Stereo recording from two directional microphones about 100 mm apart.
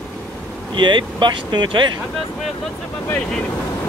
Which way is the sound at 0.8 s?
50° right (ahead or behind).